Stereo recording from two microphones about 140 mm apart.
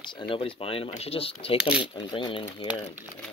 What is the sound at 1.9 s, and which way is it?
Speech, 35° left (ahead or behind).